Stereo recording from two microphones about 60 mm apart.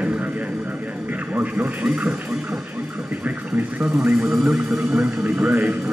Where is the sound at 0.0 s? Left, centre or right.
Right.